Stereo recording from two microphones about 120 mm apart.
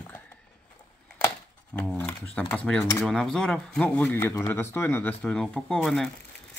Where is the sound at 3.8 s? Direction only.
15° left (ahead or behind).